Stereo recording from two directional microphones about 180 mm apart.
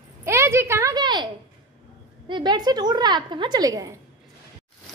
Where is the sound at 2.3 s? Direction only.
25° right (ahead or behind).